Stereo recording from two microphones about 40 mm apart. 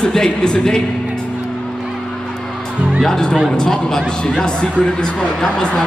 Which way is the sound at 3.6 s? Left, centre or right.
Centre.